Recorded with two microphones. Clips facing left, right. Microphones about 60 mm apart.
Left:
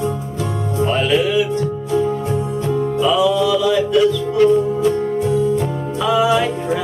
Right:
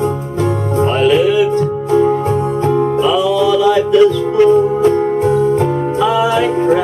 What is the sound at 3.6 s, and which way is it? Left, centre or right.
Music, right.